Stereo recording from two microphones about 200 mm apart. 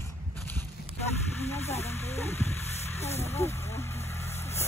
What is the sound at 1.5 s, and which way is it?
Hiss, 30° left (ahead or behind).